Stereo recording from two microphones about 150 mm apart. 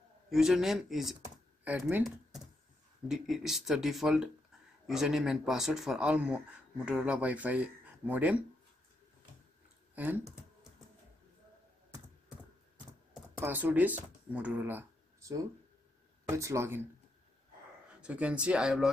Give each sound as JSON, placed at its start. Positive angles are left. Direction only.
{"t": 0.3, "sound": "speech", "side_deg": 0}
{"t": 3.1, "sound": "speech", "side_deg": 0}
{"t": 9.9, "sound": "speech", "side_deg": -10}
{"t": 13.4, "sound": "speech", "side_deg": -15}
{"t": 18.0, "sound": "speech", "side_deg": -10}